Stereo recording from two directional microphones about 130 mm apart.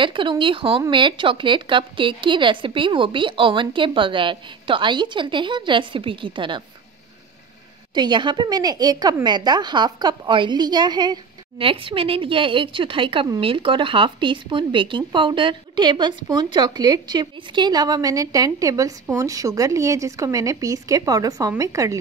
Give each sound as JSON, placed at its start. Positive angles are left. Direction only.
{"t": 0.0, "sound": "a woman's voice", "side_deg": -40}
{"t": 7.9, "sound": "a woman's voice", "side_deg": -35}